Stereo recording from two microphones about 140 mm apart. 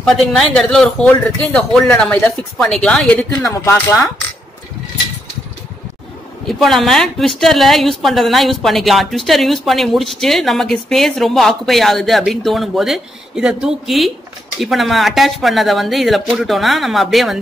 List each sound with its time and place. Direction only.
0.0 s speech: 5° left (ahead or behind)
3.6 s speech: 20° left (ahead or behind)
6.4 s speech: centre (ahead or behind)